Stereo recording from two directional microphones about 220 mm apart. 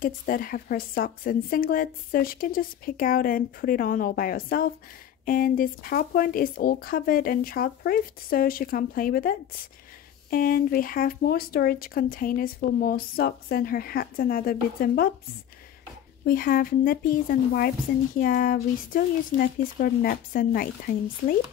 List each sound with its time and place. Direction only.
0.0 s speech: 40° left (ahead or behind)
10.3 s speech: 40° left (ahead or behind)
16.3 s speech: 40° left (ahead or behind)